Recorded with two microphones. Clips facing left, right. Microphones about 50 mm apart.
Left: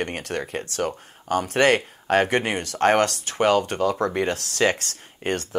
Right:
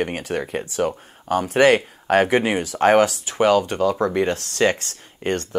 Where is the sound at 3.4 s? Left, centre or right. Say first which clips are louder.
Right 3 dB; left.